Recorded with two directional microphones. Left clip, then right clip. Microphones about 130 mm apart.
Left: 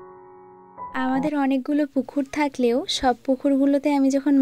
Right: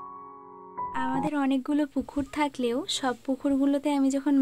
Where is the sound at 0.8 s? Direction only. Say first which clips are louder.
Left 5 dB; 45° left (ahead or behind).